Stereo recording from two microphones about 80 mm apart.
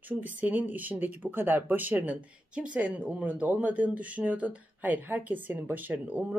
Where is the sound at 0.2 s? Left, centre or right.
Centre.